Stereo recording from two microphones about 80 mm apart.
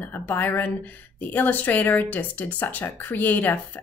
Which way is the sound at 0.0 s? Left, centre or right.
Left.